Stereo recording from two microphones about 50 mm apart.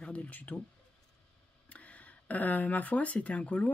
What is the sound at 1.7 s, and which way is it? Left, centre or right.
Speech, left.